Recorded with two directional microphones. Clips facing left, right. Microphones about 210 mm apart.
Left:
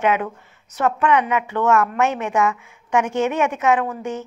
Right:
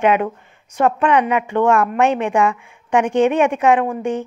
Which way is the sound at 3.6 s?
30° right (ahead or behind).